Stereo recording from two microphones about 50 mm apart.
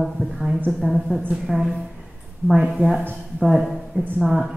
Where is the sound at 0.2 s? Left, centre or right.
Right.